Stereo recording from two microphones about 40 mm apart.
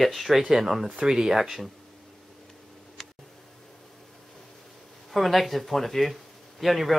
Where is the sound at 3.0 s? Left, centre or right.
Centre.